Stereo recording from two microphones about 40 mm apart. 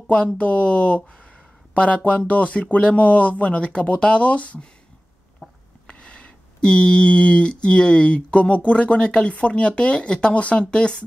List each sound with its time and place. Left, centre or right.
0.4 s speech: left
5.4 s a sound: centre
5.9 s speech: left